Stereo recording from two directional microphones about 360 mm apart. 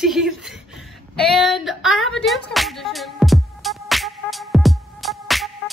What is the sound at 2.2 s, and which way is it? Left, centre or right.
Music, centre.